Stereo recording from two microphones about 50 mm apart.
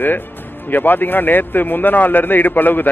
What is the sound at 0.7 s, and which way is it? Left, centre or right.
A man's voice, left.